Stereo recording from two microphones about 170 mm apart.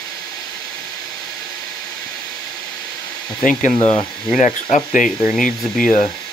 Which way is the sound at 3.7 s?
35° left (ahead or behind).